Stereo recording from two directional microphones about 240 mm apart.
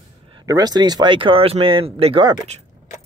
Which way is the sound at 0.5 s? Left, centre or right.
Centre.